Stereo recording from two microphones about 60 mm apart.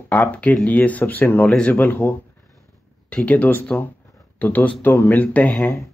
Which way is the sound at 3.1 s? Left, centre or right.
Left.